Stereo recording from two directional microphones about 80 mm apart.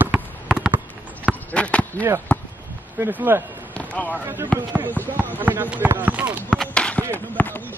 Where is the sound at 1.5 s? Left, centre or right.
Centre.